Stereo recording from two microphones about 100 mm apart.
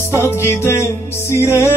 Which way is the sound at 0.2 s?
25° left (ahead or behind).